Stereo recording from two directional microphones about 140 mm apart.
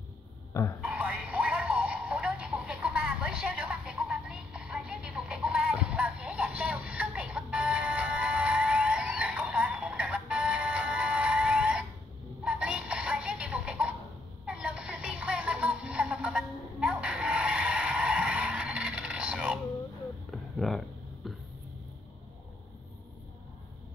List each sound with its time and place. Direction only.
0.5 s speech: 20° left (ahead or behind)
0.7 s music: 10° right (ahead or behind)
12.4 s synthetic singing: 5° right (ahead or behind)
14.4 s music: 5° right (ahead or behind)
20.2 s a sound: centre (ahead or behind)